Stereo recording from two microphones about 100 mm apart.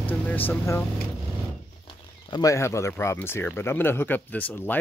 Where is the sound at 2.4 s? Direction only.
30° left (ahead or behind).